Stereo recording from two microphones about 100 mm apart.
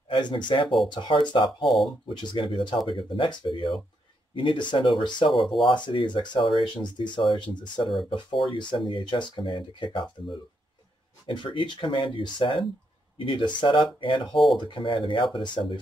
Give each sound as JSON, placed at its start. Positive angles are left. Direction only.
{"t": 0.1, "sound": "speech", "side_deg": 50}
{"t": 1.7, "sound": "speech", "side_deg": 0}
{"t": 2.0, "sound": "speech", "side_deg": 60}
{"t": 11.2, "sound": "speech", "side_deg": 55}
{"t": 14.3, "sound": "speech", "side_deg": 0}
{"t": 14.6, "sound": "speech", "side_deg": 55}